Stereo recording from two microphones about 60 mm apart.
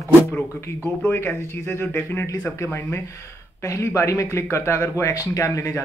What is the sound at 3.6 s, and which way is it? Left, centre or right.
Speech, left.